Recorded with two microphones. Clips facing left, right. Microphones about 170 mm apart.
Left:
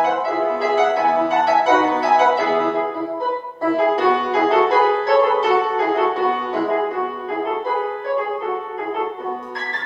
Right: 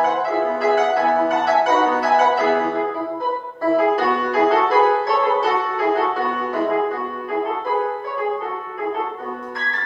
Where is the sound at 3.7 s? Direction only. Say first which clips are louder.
Left 1 dB; 25° left (ahead or behind).